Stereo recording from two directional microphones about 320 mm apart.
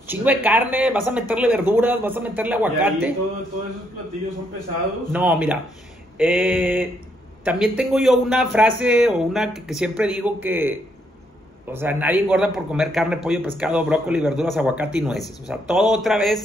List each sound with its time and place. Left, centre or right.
0.1 s a man's voice: centre
5.1 s a man's voice: centre